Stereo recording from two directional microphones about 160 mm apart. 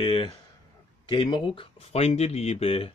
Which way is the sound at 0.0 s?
30° left (ahead or behind).